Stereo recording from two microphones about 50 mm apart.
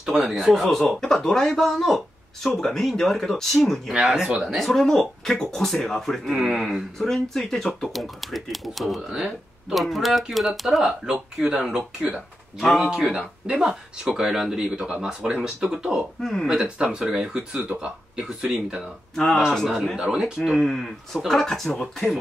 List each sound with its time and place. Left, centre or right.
0.2 s speech: centre
0.7 s speech: centre
3.9 s speech: centre
4.6 s speech: centre
6.3 s speech: centre
7.0 s speech: centre
10.9 s speech: centre
16.2 s speech: centre
16.4 s speech: centre
19.7 s speech: centre
20.0 s speech: centre
20.3 s speech: centre